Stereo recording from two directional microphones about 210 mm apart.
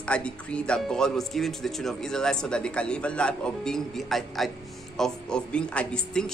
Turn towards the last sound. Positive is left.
turn(degrees=5)  # may be behind; listen again after turning